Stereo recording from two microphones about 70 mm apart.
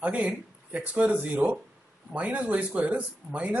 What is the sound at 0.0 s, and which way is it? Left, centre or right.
Speech, centre.